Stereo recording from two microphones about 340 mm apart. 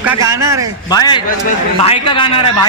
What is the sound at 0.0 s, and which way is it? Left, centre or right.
Speech, centre.